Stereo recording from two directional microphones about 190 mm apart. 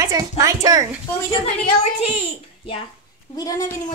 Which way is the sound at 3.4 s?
20° left (ahead or behind).